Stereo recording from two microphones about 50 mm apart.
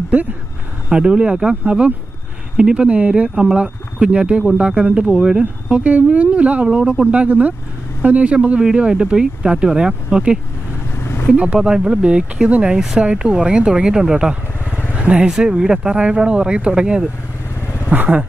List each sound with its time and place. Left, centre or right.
0.8 s speech: centre
5.4 s speech: right
11.0 s vehicle: left
11.3 s speech: right
12.7 s speech: centre
13.0 s speech: right
15.0 s vehicle: right
15.2 s speech: centre
17.8 s vehicle: right